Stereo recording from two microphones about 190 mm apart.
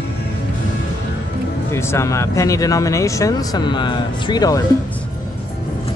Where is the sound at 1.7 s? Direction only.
15° left (ahead or behind).